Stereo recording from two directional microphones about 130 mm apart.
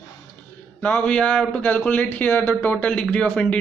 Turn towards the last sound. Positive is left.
turn(degrees=5)  # may be behind; listen again after turning